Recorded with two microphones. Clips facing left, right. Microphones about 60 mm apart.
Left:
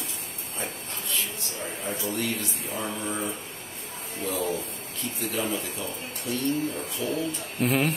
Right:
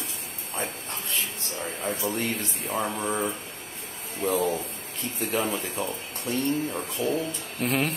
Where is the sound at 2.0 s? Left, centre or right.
Right.